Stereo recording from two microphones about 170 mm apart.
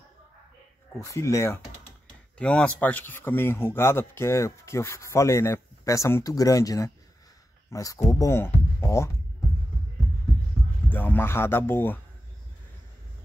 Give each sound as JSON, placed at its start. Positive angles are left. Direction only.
{"t": 0.9, "sound": "speech", "side_deg": 15}
{"t": 2.3, "sound": "speech", "side_deg": 5}
{"t": 10.9, "sound": "speech", "side_deg": 10}